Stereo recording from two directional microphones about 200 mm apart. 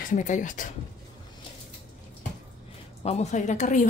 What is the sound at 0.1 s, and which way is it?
Speech, 40° left (ahead or behind).